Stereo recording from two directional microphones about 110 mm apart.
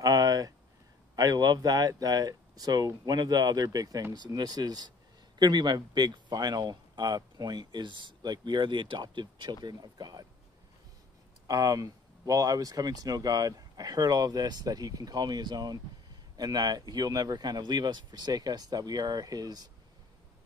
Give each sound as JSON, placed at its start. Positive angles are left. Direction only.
{"t": 0.0, "sound": "a sound", "side_deg": -30}
{"t": 1.1, "sound": "speech", "side_deg": -35}
{"t": 11.4, "sound": "speech", "side_deg": -35}